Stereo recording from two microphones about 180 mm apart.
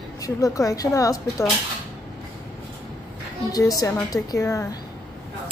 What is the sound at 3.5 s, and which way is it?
A woman's voice, 20° left (ahead or behind).